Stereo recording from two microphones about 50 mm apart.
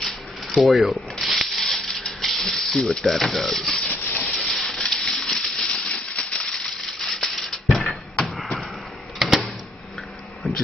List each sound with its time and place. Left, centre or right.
0.6 s speech: centre
1.2 s rub: centre
2.2 s sanding: centre
3.0 s speech: centre
3.7 s rub: left
4.6 s rub: centre
5.2 s a sound: centre
6.4 s a sound: centre
9.2 s a sound: centre